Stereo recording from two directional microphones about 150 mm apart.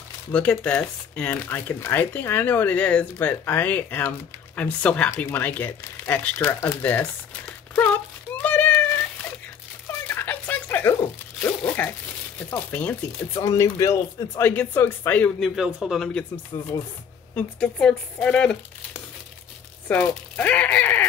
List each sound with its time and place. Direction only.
0.3 s speech: 10° left (ahead or behind)
7.7 s cat: 10° left (ahead or behind)
10.0 s a sound: 15° left (ahead or behind)
12.4 s speech: 15° left (ahead or behind)
15.5 s a man's voice: centre (ahead or behind)
16.5 s speech: 20° left (ahead or behind)
17.4 s speech: 5° left (ahead or behind)